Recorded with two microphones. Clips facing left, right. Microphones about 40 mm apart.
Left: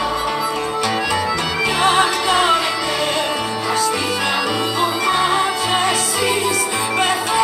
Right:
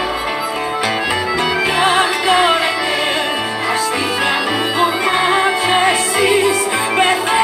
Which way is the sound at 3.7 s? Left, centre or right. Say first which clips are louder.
Even; right.